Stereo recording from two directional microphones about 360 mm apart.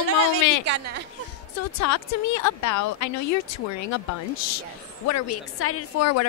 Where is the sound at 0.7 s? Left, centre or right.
Right.